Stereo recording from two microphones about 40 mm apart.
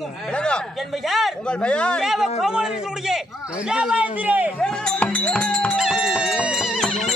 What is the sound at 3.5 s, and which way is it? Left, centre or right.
Speech, right.